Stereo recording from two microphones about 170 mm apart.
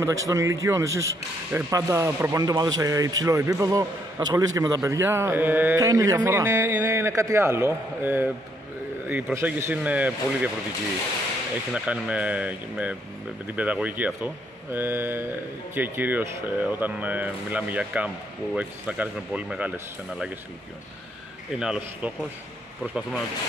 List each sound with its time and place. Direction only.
0.0 s speech: 20° right (ahead or behind)
11.7 s speech: 5° right (ahead or behind)
21.5 s speech: 5° right (ahead or behind)